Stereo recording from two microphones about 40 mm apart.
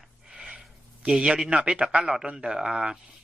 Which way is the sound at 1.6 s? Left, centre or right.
Right.